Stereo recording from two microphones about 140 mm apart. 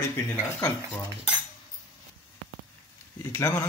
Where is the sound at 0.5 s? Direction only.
10° left (ahead or behind).